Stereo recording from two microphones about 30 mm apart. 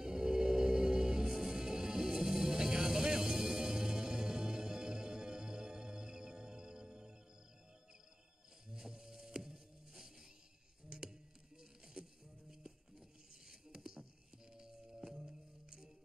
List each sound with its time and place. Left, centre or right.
0.0 s music: right
8.6 s music: centre
10.9 s a sound: right
13.7 s music: centre